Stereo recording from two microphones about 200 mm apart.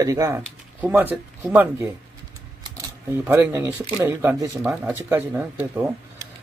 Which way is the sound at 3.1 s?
10° right (ahead or behind).